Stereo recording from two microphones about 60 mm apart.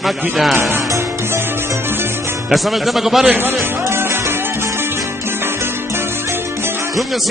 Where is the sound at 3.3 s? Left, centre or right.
Right.